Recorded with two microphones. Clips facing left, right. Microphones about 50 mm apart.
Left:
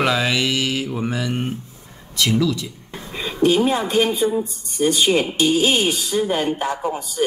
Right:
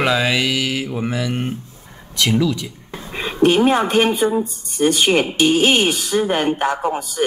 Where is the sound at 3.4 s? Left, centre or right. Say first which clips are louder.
Right 3 dB; right.